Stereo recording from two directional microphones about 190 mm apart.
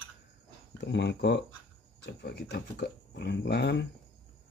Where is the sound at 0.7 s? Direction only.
65° left (ahead or behind).